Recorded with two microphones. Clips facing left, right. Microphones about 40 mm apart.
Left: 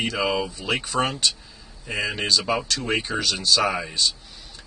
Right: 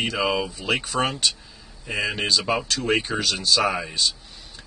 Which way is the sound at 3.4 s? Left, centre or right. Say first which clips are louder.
Even; centre.